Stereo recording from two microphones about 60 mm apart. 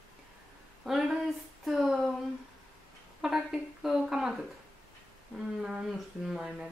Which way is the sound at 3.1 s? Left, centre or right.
Centre.